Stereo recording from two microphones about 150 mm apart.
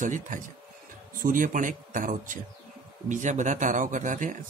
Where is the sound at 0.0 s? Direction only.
60° right (ahead or behind).